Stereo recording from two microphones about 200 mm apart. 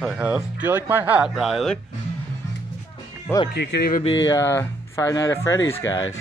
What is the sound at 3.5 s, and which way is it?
Speech, 55° left (ahead or behind).